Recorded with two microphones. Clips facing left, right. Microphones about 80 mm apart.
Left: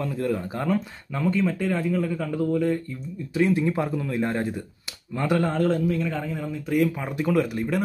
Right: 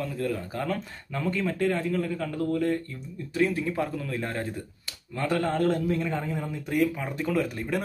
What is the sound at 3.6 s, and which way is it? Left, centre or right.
Speech, left.